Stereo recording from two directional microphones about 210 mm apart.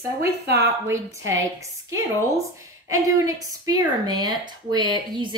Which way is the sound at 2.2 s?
15° right (ahead or behind).